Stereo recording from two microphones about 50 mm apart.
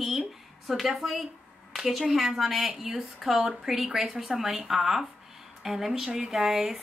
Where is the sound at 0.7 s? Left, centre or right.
Centre.